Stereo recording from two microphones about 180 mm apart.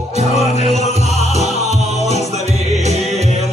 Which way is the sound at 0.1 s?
40° right (ahead or behind).